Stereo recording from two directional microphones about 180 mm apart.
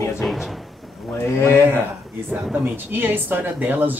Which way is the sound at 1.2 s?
15° left (ahead or behind).